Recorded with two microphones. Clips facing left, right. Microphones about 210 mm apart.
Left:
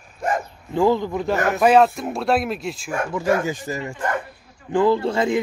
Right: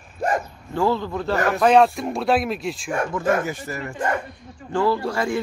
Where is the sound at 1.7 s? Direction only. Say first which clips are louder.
Even; centre (ahead or behind).